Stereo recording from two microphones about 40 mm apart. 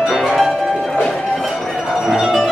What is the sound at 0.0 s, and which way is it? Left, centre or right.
Music, centre.